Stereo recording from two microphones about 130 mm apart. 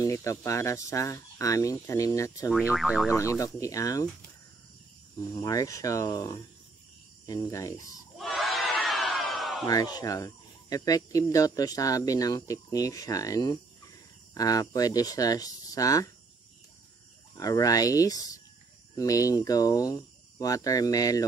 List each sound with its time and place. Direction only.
0.0 s speech: 25° left (ahead or behind)
2.6 s speech: 10° right (ahead or behind)
3.1 s speech: 25° left (ahead or behind)
5.3 s speech: 25° left (ahead or behind)
8.8 s a sound: centre (ahead or behind)
9.7 s speech: 30° left (ahead or behind)
17.4 s speech: 30° left (ahead or behind)